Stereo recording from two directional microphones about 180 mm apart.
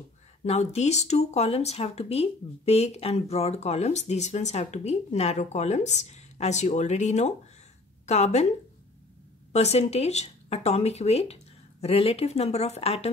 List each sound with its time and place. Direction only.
0.5 s speech: 40° left (ahead or behind)
9.5 s speech: 35° left (ahead or behind)